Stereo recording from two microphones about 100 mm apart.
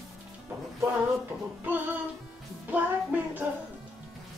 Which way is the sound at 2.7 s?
15° right (ahead or behind).